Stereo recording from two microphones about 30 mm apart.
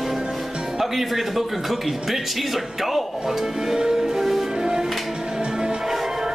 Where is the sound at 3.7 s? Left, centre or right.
Centre.